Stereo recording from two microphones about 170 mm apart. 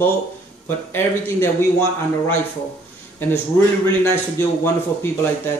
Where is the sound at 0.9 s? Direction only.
15° left (ahead or behind).